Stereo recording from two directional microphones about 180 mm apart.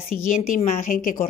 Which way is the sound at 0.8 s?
50° left (ahead or behind).